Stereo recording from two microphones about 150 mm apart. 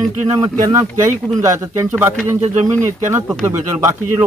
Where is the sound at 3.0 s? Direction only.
15° right (ahead or behind).